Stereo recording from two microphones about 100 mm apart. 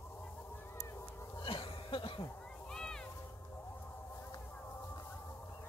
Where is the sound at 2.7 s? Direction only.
5° left (ahead or behind).